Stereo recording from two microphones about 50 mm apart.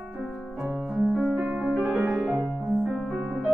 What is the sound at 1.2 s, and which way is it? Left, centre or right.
Music, right.